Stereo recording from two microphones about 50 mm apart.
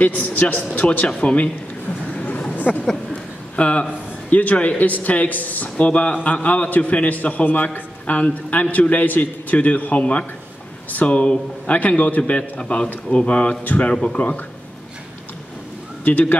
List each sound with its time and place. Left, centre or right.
0.0 s a man's voice: left
2.1 s a sound: left
4.3 s a man's voice: left
16.0 s speech: left